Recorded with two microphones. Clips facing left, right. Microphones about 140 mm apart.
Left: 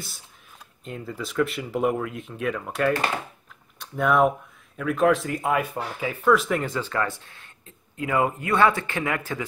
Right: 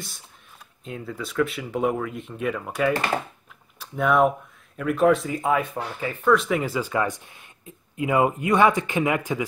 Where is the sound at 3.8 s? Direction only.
Centre (ahead or behind).